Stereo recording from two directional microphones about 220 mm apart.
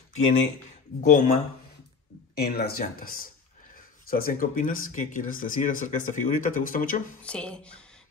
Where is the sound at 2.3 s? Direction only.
45° left (ahead or behind).